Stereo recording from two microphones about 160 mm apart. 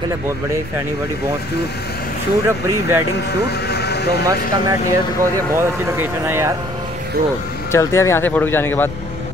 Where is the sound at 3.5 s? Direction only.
90° left.